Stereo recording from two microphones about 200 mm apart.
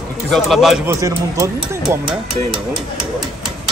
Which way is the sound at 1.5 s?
5° right (ahead or behind).